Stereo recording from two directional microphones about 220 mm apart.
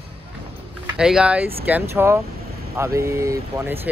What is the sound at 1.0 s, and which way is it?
Speech, 5° right (ahead or behind).